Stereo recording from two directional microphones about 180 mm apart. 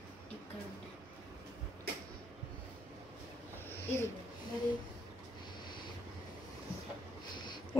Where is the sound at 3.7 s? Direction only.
10° left (ahead or behind).